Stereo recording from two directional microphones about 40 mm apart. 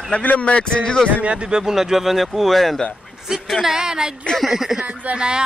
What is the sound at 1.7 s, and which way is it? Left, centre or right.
Speech, centre.